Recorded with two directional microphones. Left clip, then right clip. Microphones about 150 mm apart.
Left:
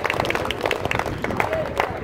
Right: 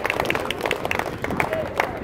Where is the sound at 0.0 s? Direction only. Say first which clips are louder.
Left 1 dB; 45° right (ahead or behind).